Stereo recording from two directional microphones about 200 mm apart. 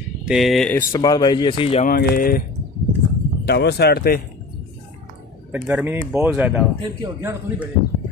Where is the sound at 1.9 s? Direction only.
50° left (ahead or behind).